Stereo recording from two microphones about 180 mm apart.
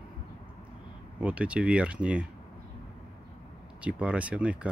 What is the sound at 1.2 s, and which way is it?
Speech, 5° right (ahead or behind).